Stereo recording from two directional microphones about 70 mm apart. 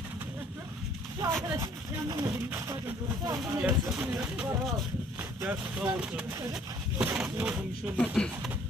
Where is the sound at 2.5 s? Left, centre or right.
Right.